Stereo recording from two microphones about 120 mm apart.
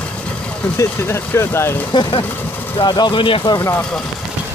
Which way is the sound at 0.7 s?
20° left (ahead or behind).